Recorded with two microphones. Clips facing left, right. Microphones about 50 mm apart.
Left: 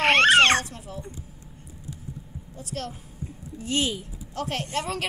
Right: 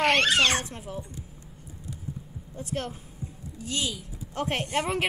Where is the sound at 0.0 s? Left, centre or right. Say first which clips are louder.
Left 5 dB; left.